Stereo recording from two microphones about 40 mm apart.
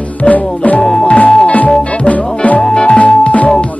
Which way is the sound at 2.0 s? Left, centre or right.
Left.